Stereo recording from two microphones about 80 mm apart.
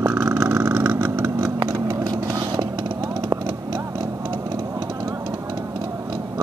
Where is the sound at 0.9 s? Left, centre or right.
Right.